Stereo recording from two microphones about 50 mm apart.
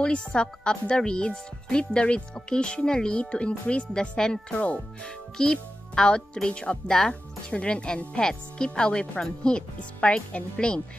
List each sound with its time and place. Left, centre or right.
0.0 s speech: centre